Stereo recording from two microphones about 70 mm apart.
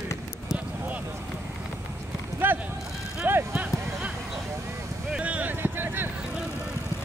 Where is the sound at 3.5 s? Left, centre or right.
Centre.